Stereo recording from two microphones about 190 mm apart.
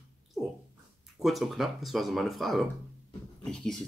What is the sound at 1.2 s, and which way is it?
Speech, centre (ahead or behind).